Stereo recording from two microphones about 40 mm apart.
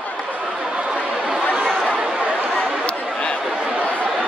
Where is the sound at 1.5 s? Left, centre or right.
Centre.